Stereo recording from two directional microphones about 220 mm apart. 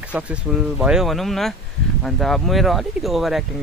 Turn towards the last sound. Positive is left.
turn(degrees=0)  # may be behind; listen again after turning